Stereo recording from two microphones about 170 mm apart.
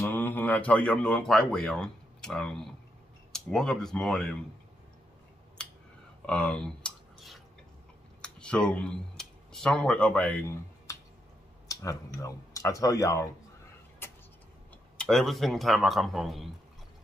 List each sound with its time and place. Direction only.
0.0 s a man's voice: 10° left (ahead or behind)
5.6 s scissors: 5° left (ahead or behind)
6.2 s a sound: 5° left (ahead or behind)
8.2 s speech: 5° left (ahead or behind)
11.6 s speech: 20° left (ahead or behind)
14.0 s vehicle: 15° left (ahead or behind)
15.0 s speech: centre (ahead or behind)